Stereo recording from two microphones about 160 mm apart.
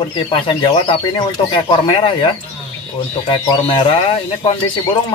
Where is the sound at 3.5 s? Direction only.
35° left (ahead or behind).